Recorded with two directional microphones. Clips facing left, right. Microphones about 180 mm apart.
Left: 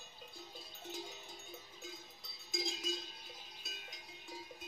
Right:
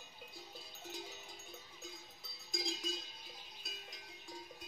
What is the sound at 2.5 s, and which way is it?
Cowbell, centre (ahead or behind).